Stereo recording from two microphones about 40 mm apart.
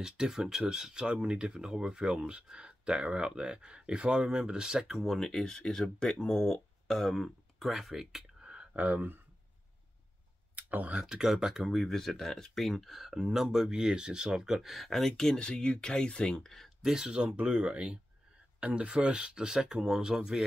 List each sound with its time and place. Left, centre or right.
0.0 s speech: centre
4.8 s speech: centre
5.3 s speech: centre
7.6 s speech: centre
8.5 s a sound: right
10.5 s a sound: right
11.1 s speech: centre
11.6 s speech: centre
14.7 s speech: centre
15.3 s speech: left
16.4 s speech: centre
16.8 s speech: centre